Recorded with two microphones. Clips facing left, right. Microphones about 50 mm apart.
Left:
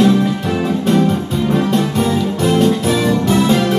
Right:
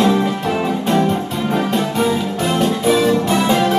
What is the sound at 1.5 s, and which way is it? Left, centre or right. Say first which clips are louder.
Music: left 2 dB; centre.